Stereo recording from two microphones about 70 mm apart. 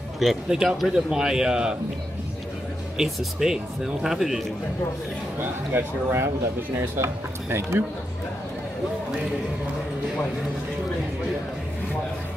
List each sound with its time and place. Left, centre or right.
0.2 s a man's voice: centre
3.0 s speech: centre
5.4 s speech: right